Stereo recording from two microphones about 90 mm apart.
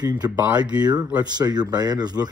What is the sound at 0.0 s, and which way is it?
Speech, 50° right (ahead or behind).